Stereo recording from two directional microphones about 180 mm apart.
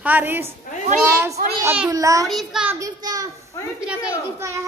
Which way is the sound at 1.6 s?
15° right (ahead or behind).